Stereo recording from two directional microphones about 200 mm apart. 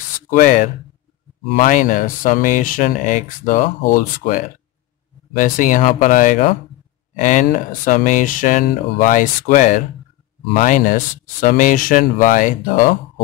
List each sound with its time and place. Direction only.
0.3 s speech: 40° left (ahead or behind)